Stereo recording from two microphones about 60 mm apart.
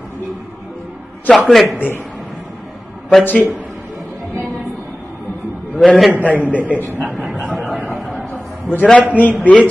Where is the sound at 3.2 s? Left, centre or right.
Left.